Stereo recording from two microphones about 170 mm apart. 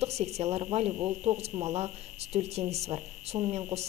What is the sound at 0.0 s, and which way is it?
Speech, 40° right (ahead or behind).